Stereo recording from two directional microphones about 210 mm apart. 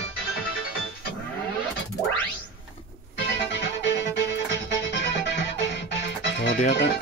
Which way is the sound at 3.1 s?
55° left (ahead or behind).